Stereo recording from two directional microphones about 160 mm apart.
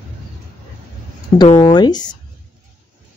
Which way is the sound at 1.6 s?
25° left (ahead or behind).